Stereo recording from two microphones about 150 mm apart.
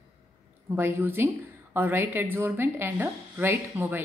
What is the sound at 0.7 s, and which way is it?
Speech, 15° right (ahead or behind).